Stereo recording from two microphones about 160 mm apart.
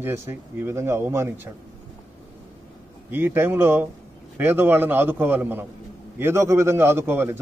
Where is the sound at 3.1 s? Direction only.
15° right (ahead or behind).